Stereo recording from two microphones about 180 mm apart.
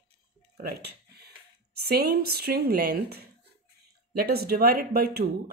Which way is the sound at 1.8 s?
60° right (ahead or behind).